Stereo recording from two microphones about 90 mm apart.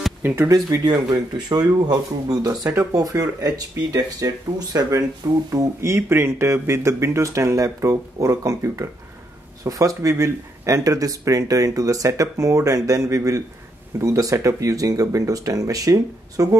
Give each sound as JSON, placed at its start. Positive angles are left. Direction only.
{"t": 0.2, "sound": "speech", "side_deg": -20}
{"t": 0.8, "sound": "speech", "side_deg": -50}